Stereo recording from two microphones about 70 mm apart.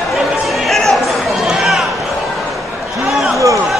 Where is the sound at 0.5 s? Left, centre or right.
Centre.